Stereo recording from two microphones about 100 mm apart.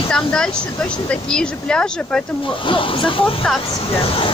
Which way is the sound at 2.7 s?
60° left (ahead or behind).